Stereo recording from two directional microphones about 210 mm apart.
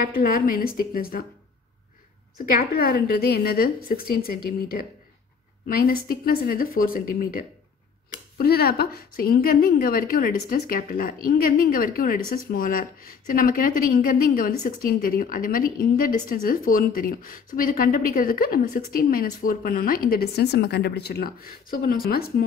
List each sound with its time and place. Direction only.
0.1 s a woman's voice: 45° left (ahead or behind)
2.3 s a woman's voice: 45° left (ahead or behind)